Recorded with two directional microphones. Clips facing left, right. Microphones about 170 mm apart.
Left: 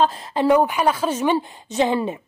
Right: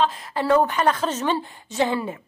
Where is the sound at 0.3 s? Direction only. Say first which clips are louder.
Left 2 dB; 15° left (ahead or behind).